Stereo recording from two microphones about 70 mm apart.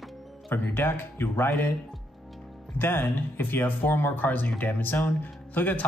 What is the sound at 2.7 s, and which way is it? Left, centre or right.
Speech, left.